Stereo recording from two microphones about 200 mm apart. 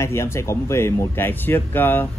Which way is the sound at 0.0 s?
15° left (ahead or behind).